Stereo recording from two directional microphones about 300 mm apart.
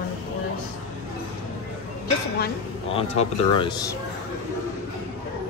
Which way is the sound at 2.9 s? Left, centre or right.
Centre.